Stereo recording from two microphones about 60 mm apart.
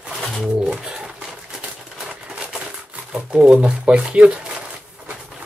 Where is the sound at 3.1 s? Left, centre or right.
Centre.